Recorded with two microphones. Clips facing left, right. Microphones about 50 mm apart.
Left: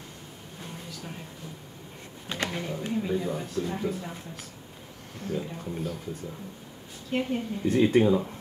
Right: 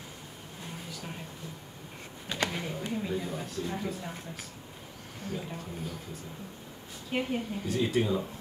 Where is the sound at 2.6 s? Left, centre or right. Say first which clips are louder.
Left 4 dB; centre.